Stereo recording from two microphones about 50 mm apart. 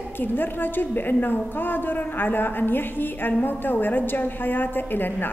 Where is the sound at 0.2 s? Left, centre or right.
Left.